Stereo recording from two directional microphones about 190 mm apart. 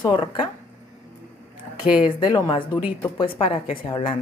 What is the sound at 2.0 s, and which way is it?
A woman's voice, 20° left (ahead or behind).